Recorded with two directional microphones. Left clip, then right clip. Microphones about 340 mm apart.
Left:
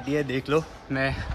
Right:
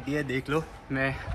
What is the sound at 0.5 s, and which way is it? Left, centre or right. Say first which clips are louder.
Speech: left 7 dB; left.